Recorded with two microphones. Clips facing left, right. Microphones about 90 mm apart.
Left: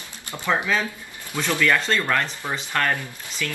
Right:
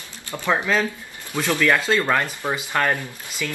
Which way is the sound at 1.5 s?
10° right (ahead or behind).